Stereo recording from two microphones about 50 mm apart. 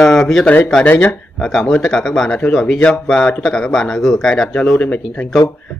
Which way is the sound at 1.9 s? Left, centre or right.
Centre.